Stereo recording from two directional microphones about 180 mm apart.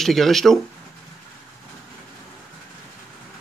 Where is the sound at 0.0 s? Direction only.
Centre (ahead or behind).